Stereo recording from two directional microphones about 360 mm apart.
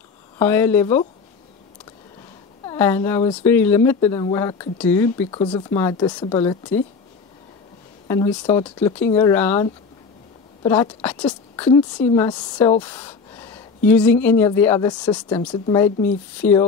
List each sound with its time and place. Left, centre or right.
0.4 s speech: centre
2.6 s speech: centre
8.1 s a woman's voice: centre